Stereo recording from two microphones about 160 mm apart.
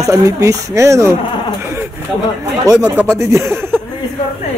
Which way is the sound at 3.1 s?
20° right (ahead or behind).